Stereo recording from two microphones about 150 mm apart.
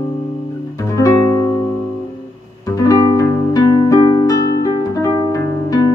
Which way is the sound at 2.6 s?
20° left (ahead or behind).